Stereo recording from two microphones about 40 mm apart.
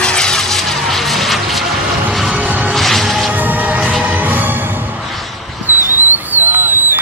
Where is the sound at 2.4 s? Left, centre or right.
Right.